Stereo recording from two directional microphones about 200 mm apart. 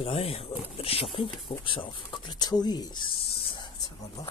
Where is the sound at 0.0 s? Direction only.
30° left (ahead or behind).